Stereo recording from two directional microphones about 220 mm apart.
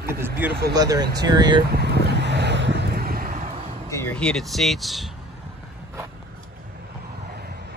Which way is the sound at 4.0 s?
5° left (ahead or behind).